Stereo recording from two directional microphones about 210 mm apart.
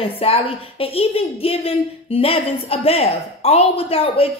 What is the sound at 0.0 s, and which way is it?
A woman's voice, 25° left (ahead or behind).